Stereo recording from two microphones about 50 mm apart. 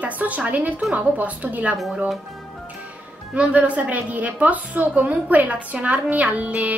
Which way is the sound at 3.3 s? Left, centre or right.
Right.